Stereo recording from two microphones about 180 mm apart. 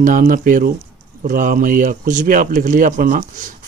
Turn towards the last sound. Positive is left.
turn(degrees=-45)  # may be behind; listen again after turning